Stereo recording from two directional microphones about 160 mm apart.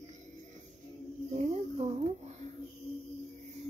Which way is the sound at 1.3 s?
40° right (ahead or behind).